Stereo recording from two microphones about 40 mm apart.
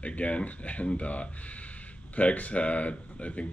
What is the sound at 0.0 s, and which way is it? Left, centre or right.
Speech, left.